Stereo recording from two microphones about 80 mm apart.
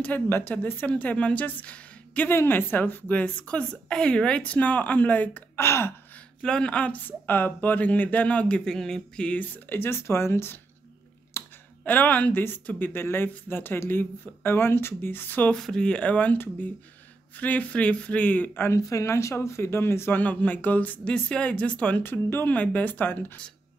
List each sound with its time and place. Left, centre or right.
0.0 s speech: left
5.6 s gasp: left
6.1 s speech: centre; by 10.6 s left
11.4 s clicking: left
11.8 s speech: left
15.5 s speech: centre
18.7 s speech: left; by 22.0 s centre
22.0 s speech: left